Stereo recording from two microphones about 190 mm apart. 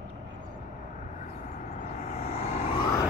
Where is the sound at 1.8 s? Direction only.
40° left (ahead or behind).